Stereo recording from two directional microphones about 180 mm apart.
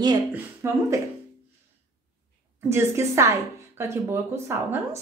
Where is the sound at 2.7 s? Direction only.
15° right (ahead or behind).